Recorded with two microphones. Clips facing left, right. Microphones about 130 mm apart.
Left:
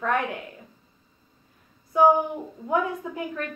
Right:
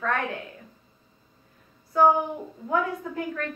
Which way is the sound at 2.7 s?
20° left (ahead or behind).